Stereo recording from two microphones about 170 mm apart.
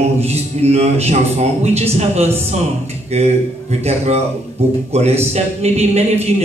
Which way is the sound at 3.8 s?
40° right (ahead or behind).